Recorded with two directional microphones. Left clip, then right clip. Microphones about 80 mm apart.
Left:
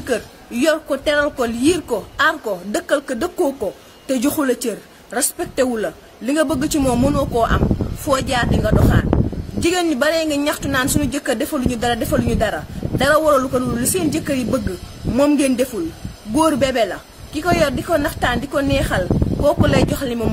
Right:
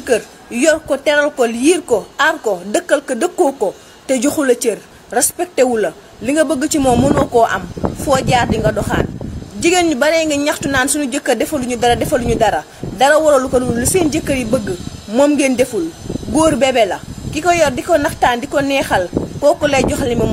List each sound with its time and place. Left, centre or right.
0.0 s a woman's voice: left